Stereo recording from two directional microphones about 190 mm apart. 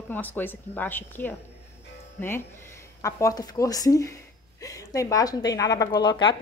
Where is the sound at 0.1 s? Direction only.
10° left (ahead or behind).